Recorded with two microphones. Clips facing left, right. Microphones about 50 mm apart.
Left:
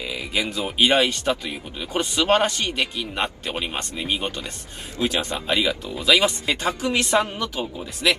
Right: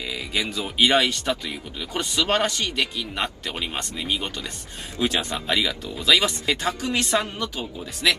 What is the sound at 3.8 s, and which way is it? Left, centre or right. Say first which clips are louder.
Speech: left 1 dB; left.